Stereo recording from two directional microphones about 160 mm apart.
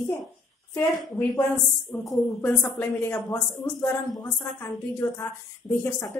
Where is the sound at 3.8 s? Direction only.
25° left (ahead or behind).